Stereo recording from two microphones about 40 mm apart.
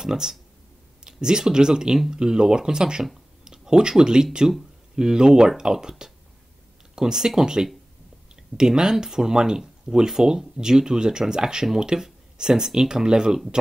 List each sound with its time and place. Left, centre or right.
0.0 s speech: centre